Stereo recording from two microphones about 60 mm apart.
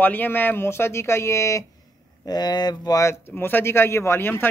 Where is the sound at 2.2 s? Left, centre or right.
Left.